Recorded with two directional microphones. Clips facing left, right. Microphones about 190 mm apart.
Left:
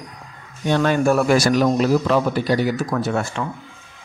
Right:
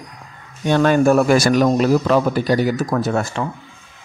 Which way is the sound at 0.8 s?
45° right (ahead or behind).